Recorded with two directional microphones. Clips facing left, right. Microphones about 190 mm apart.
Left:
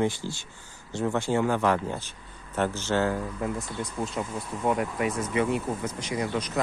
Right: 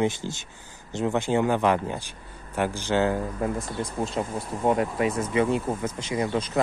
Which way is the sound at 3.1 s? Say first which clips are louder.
Right 3 dB; 35° right (ahead or behind).